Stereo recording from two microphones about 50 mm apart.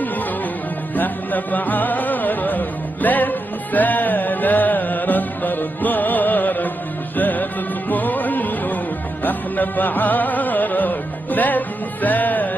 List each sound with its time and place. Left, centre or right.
0.9 s music: left